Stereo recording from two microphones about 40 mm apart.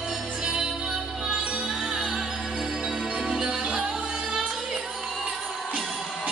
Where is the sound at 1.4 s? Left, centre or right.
Right.